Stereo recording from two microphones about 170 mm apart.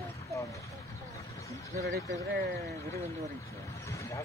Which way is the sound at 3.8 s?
15° left (ahead or behind).